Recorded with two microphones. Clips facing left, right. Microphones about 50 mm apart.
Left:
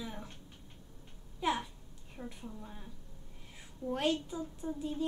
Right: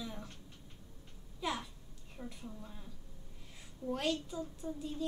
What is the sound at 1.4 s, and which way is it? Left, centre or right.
A child's voice, left.